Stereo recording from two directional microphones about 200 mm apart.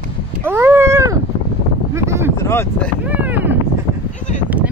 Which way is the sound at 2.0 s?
15° right (ahead or behind).